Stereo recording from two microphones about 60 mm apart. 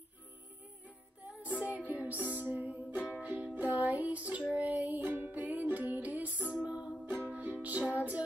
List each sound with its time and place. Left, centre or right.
1.2 s music: right